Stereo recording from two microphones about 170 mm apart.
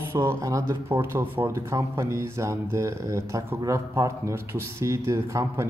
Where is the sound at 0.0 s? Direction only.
15° right (ahead or behind).